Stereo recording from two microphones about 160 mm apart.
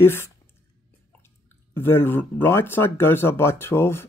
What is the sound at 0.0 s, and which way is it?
Speech, 15° left (ahead or behind).